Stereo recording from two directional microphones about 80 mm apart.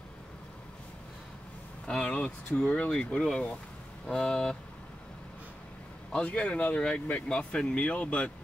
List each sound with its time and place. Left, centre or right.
1.9 s speech: centre
6.1 s speech: centre